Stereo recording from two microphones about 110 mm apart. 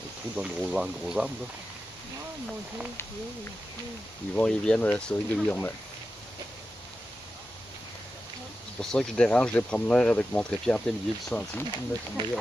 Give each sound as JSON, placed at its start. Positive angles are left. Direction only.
{"t": 0.4, "sound": "speech", "side_deg": -10}
{"t": 4.4, "sound": "speech", "side_deg": 10}
{"t": 8.7, "sound": "speech", "side_deg": 10}
{"t": 12.2, "sound": "speech", "side_deg": -45}